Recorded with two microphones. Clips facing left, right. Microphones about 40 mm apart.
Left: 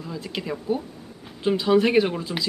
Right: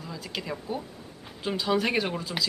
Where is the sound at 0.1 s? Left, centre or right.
Centre.